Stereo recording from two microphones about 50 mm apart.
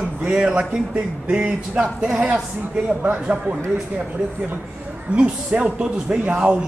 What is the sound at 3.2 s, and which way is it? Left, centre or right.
Speech, right.